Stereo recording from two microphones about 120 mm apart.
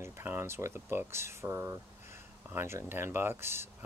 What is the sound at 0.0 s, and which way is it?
Speech, 20° right (ahead or behind).